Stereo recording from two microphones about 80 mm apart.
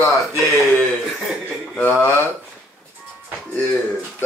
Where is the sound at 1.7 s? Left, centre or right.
Left.